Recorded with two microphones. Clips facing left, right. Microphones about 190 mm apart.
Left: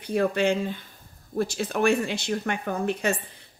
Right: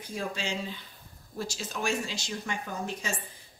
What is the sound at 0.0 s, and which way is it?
A woman's voice, 65° left (ahead or behind).